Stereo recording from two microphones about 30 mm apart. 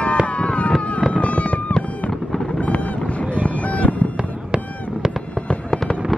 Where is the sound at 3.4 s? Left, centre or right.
Left.